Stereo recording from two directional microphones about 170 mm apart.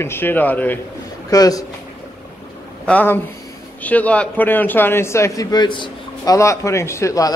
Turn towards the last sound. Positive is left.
turn(degrees=20)  # may be behind; listen again after turning